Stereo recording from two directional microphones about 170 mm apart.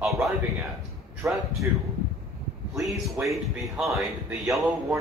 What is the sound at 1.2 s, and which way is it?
Speech, 15° right (ahead or behind).